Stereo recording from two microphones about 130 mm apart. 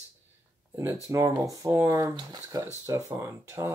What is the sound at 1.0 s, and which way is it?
Speech, 25° right (ahead or behind).